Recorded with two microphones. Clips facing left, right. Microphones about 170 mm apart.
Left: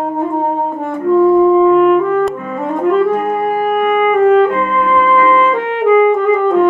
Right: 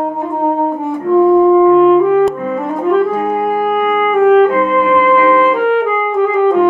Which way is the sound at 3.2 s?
Centre (ahead or behind).